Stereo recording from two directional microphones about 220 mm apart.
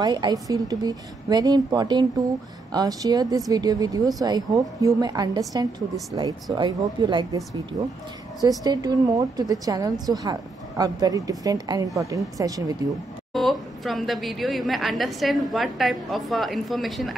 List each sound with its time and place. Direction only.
0.0 s a woman's voice: 20° right (ahead or behind)
8.4 s a woman's voice: 15° right (ahead or behind)
13.3 s a woman's voice: centre (ahead or behind)